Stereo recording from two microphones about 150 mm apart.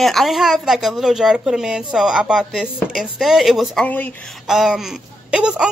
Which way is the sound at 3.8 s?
10° left (ahead or behind).